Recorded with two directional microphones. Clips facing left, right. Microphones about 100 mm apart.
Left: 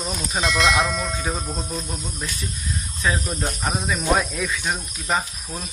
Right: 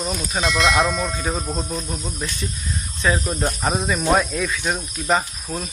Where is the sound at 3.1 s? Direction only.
15° right (ahead or behind).